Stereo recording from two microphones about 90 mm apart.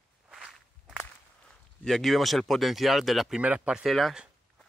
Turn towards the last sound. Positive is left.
turn(degrees=0)  # may be behind; listen again after turning